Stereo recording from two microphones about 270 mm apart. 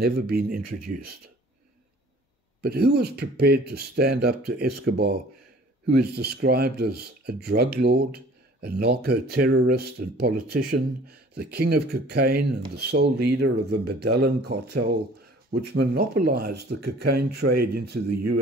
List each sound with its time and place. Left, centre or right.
0.0 s speech: right
2.6 s speech: right